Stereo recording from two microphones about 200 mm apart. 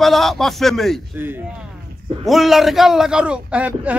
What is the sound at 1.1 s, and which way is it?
A man's voice, 10° right (ahead or behind).